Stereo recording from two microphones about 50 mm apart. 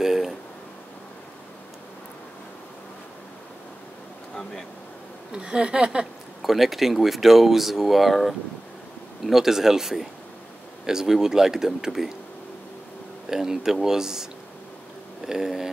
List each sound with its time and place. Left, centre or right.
0.0 s a sound: centre
5.3 s speech: centre
6.4 s speech: centre
13.3 s speech: centre
15.2 s speech: centre